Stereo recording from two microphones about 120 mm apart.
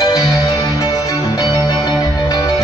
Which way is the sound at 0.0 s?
35° left (ahead or behind).